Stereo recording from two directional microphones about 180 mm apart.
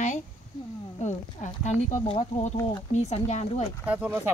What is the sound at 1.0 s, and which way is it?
Speech, 40° left (ahead or behind).